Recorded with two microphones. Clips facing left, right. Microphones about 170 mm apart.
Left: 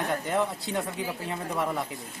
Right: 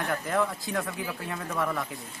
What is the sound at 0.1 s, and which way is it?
Speech, 30° left (ahead or behind).